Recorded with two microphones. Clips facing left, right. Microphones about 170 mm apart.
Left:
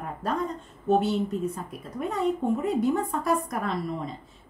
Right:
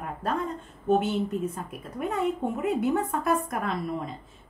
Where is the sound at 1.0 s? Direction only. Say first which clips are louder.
Left 1 dB; 35° left (ahead or behind).